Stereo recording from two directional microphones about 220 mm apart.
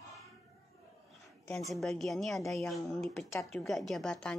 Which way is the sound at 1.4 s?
5° left (ahead or behind).